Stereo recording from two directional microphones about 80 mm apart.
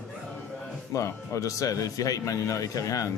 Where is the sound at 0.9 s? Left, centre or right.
Left.